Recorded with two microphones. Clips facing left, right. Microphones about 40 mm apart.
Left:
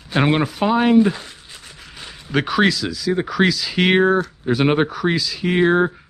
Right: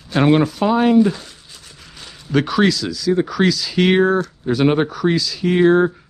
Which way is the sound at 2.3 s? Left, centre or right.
Centre.